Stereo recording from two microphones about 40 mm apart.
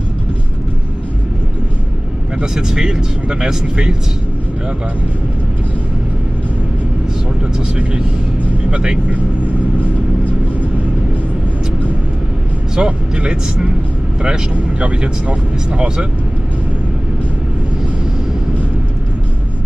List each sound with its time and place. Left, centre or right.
2.4 s speech: centre
7.5 s speech: right
12.7 s speech: right